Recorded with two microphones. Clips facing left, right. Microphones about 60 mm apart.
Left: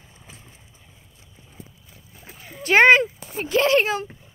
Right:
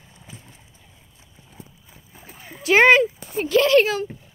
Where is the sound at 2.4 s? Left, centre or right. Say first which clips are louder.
Even; centre.